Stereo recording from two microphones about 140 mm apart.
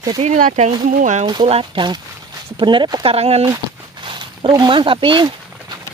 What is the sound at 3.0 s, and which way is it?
Speech, 45° right (ahead or behind).